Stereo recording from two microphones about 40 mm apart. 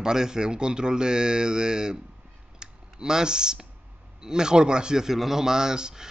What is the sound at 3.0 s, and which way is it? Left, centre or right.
A man's voice, centre.